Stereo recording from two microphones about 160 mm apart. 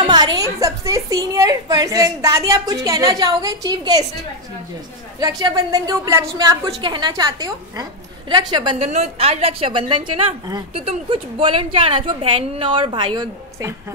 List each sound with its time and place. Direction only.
0.0 s a woman's voice: 25° right (ahead or behind)
5.4 s a woman's voice: 20° right (ahead or behind)